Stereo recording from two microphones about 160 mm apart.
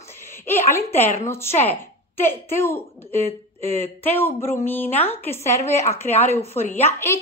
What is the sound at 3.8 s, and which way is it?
Speech, 15° left (ahead or behind).